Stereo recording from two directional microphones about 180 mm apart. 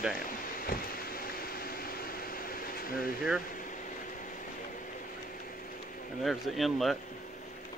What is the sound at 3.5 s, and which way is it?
Vehicle, 45° left (ahead or behind).